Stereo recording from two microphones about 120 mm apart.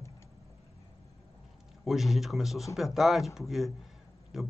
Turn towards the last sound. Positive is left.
turn(degrees=-5)  # may be behind; listen again after turning